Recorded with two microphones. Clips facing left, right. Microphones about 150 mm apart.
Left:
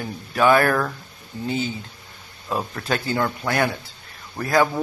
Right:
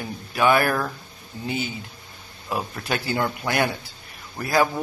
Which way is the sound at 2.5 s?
15° right (ahead or behind).